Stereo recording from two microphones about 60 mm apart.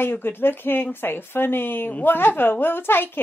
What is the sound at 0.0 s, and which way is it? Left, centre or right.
A woman's voice, left.